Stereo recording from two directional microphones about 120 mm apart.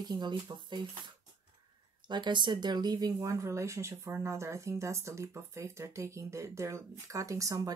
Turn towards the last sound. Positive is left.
turn(degrees=-25)  # may be behind; listen again after turning